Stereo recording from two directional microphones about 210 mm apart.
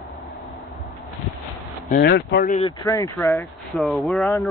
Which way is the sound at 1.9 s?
50° left (ahead or behind).